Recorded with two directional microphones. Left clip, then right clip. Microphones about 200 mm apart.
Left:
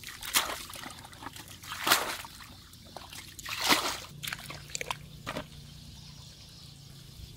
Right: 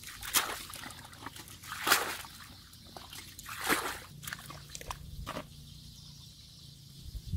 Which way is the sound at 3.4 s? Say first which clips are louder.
Left 5 dB; 50° left (ahead or behind).